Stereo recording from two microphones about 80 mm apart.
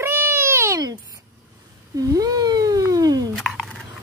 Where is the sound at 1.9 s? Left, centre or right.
Right.